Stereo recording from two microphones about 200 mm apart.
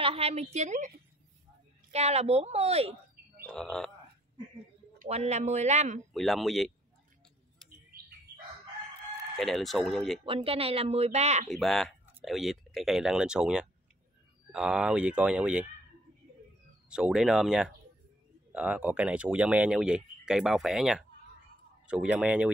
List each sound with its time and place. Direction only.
0.0 s speech: 30° right (ahead or behind)
3.4 s speech: 5° left (ahead or behind)
4.9 s speech: 35° right (ahead or behind)
6.1 s speech: centre (ahead or behind)
9.4 s speech: centre (ahead or behind)
10.2 s speech: 25° right (ahead or behind)
11.5 s speech: centre (ahead or behind)
16.9 s speech: 5° right (ahead or behind)